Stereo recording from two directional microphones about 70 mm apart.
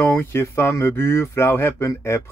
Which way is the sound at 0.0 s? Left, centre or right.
Left.